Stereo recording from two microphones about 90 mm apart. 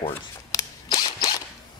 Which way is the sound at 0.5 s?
40° left (ahead or behind).